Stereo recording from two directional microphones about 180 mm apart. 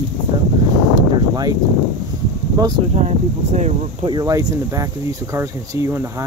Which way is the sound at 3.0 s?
40° right (ahead or behind).